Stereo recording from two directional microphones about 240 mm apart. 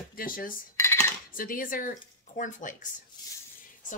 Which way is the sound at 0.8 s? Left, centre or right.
Centre.